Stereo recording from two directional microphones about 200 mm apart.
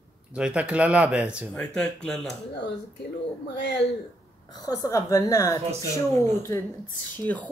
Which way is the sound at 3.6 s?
60° left (ahead or behind).